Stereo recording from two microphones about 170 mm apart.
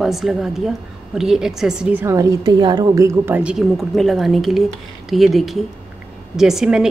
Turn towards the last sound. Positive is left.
turn(degrees=-5)  # may be behind; listen again after turning